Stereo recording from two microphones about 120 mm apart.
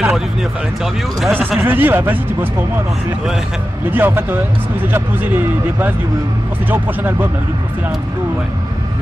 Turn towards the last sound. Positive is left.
turn(degrees=-15)  # may be behind; listen again after turning